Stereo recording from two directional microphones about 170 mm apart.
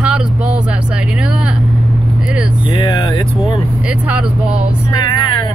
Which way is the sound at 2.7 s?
30° left (ahead or behind).